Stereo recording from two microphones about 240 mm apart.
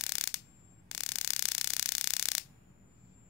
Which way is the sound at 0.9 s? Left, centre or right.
Centre.